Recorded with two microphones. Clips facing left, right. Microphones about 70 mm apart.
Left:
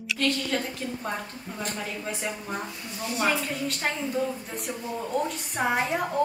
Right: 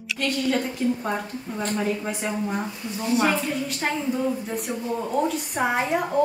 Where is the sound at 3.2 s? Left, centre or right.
Centre.